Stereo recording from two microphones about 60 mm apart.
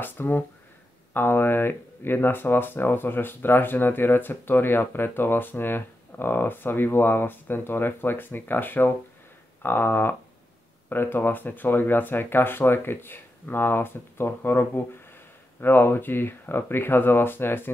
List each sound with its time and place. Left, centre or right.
0.0 s speech: left